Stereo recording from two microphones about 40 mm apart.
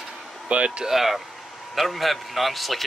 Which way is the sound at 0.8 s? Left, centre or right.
Centre.